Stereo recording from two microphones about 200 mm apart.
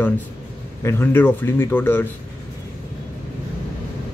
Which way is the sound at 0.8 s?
10° left (ahead or behind).